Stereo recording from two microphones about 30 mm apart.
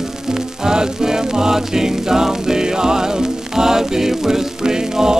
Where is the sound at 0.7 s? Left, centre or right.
Right.